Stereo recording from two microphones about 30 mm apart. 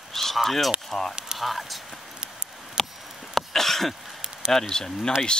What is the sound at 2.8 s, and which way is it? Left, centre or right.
Chop, centre.